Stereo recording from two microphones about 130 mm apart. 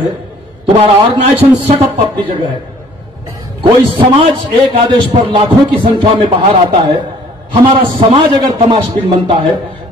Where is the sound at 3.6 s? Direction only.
40° right (ahead or behind).